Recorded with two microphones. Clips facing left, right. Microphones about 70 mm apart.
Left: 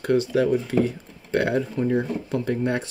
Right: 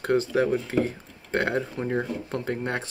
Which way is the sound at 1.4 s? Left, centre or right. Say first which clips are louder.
Left 4 dB; right.